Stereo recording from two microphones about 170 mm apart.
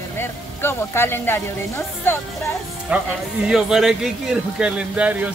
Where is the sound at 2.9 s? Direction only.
10° right (ahead or behind).